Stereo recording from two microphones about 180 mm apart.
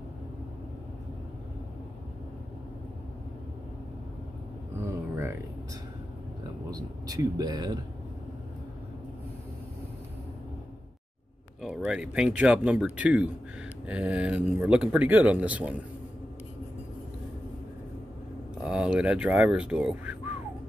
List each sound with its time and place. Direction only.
5.1 s music: 15° right (ahead or behind)
6.7 s speech: 20° right (ahead or behind)
11.6 s speech: 5° right (ahead or behind)
18.6 s speech: 5° right (ahead or behind)